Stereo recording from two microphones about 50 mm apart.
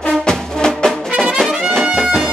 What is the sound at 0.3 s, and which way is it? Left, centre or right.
Music, centre.